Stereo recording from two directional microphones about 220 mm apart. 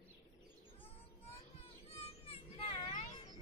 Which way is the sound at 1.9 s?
25° left (ahead or behind).